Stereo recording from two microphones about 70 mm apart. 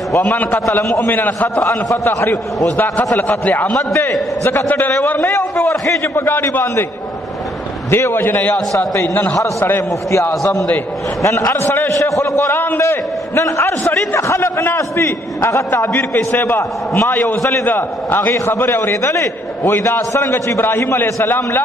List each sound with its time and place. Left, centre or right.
0.2 s a man's voice: left
1.6 s a man's voice: left
3.2 s a man's voice: left
5.2 s a man's voice: left
7.9 s a man's voice: left
12.4 s a man's voice: left
17.6 s a man's voice: left
18.9 s a man's voice: left